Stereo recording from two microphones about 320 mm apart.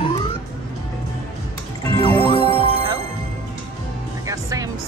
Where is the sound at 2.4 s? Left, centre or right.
Centre.